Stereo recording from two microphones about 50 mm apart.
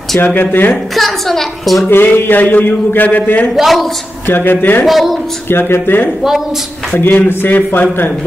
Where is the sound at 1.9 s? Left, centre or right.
Left.